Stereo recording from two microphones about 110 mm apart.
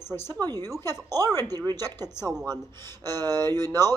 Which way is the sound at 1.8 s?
20° left (ahead or behind).